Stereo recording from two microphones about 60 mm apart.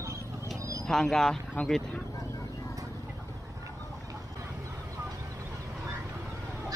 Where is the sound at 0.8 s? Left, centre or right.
Centre.